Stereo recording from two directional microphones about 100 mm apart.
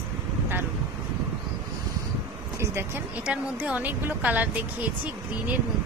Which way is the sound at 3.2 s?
10° right (ahead or behind).